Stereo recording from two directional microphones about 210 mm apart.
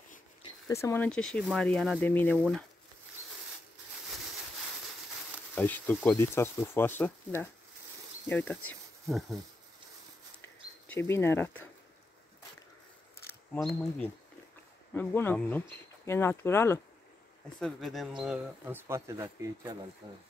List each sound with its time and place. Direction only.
0.4 s speech: 15° left (ahead or behind)
5.5 s speech: 10° left (ahead or behind)
10.4 s a sound: 10° left (ahead or behind)
13.5 s speech: 5° left (ahead or behind); by 20.2 s 20° right (ahead or behind)